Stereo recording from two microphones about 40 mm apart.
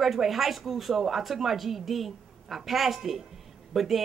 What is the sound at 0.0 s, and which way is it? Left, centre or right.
Speech, centre.